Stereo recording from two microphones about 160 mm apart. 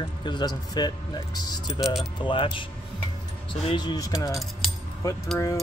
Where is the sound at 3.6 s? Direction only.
25° left (ahead or behind).